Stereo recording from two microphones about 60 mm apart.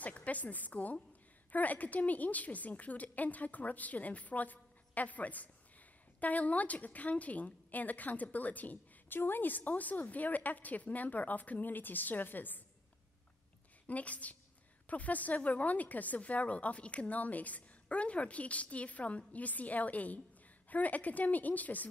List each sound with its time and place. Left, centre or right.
0.0 s a sound: left
1.5 s a woman's voice: left
13.8 s a woman's voice: left